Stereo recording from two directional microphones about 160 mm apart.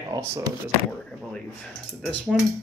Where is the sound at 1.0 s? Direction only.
5° left (ahead or behind).